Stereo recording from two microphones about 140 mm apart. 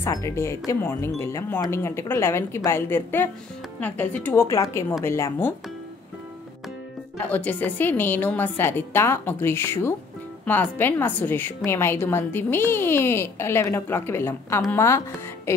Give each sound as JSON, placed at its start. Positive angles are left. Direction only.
{"t": 0.0, "sound": "a woman's voice", "side_deg": 20}
{"t": 7.2, "sound": "a woman's voice", "side_deg": 10}